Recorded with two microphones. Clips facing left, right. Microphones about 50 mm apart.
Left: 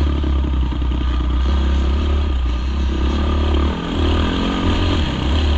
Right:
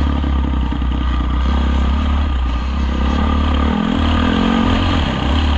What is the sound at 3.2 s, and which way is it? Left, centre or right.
Vehicle, right.